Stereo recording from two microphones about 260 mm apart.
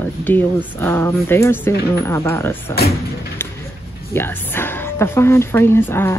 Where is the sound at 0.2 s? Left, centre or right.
Centre.